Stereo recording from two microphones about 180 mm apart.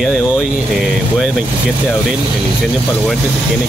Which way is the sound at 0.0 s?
Centre (ahead or behind).